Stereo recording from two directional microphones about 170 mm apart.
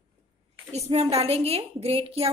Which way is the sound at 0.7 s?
35° right (ahead or behind).